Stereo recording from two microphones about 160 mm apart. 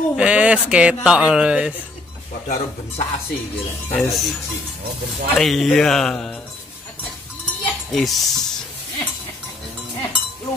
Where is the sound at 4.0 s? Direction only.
Centre (ahead or behind).